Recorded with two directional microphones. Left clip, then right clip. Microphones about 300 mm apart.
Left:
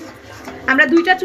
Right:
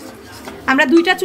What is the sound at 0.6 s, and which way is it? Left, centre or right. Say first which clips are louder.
Speech: even; right.